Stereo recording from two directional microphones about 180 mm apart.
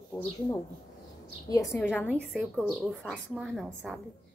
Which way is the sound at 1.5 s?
20° left (ahead or behind).